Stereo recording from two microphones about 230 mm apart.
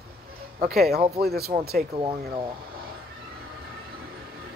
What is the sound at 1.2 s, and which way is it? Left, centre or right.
Speech, right.